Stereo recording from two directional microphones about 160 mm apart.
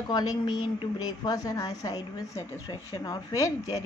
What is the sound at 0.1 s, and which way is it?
A woman's voice, 25° left (ahead or behind).